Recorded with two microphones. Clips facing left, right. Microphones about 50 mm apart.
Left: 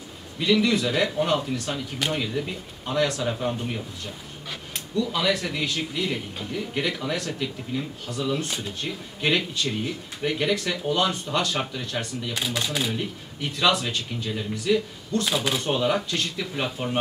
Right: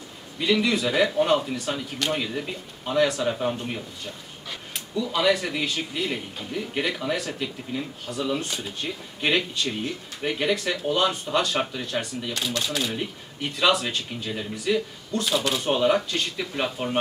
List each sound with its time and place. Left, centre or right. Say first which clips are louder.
0.4 s speech: left 1 dB; centre
12.9 s speech: even; centre
15.2 s speech: right 3 dB; centre